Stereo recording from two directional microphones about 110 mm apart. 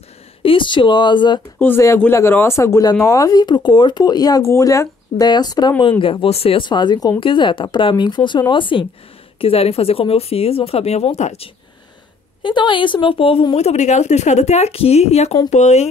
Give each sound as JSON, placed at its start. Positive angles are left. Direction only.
{"t": 0.4, "sound": "speech", "side_deg": 50}
{"t": 1.6, "sound": "speech", "side_deg": 20}
{"t": 9.4, "sound": "speech", "side_deg": 60}
{"t": 12.4, "sound": "speech", "side_deg": 45}
{"t": 13.6, "sound": "speech", "side_deg": 80}